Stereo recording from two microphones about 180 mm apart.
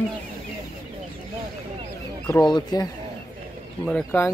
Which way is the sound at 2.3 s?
20° left (ahead or behind).